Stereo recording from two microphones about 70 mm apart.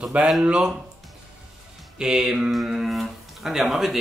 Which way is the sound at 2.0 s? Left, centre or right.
Centre.